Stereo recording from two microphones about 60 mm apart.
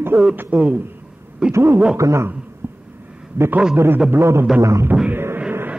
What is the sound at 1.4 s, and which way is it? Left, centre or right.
Speech, centre.